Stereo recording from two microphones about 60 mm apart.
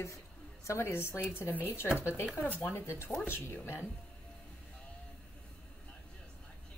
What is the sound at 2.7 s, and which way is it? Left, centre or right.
A woman's voice, left.